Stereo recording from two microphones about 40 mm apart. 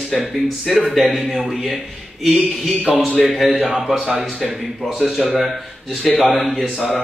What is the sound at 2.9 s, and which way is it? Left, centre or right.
A man's voice, centre.